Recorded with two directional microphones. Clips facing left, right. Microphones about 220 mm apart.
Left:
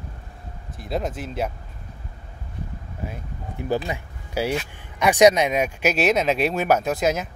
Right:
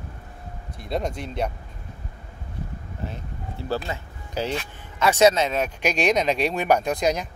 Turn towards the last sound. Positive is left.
turn(degrees=5)  # may be behind; listen again after turning